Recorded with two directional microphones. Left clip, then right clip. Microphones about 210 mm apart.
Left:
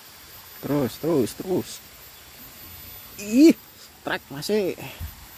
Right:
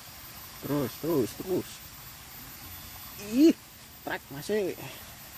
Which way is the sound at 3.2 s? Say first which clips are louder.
Left 6 dB; 30° left (ahead or behind).